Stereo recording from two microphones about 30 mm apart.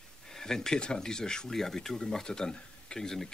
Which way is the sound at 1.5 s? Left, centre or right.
Centre.